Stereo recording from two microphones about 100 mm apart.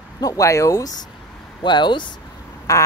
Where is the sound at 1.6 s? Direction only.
50° left (ahead or behind).